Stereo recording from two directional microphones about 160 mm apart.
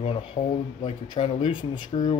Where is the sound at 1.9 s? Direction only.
50° left (ahead or behind).